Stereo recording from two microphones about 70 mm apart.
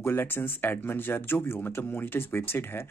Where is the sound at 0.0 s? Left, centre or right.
Left.